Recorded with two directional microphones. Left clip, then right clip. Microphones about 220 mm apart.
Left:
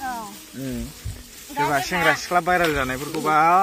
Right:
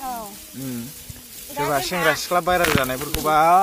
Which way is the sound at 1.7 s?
5° right (ahead or behind).